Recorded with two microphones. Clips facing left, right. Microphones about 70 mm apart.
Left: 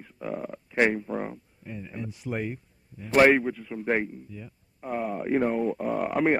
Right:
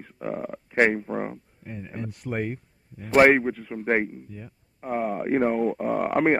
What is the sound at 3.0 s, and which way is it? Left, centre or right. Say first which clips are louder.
Speech: right 2 dB; right.